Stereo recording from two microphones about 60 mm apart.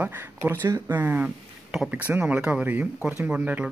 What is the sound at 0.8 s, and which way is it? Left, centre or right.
Speech, right.